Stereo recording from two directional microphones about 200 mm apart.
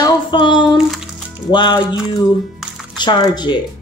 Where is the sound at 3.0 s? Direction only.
20° left (ahead or behind).